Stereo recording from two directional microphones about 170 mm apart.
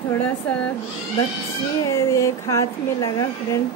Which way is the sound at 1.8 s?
20° left (ahead or behind).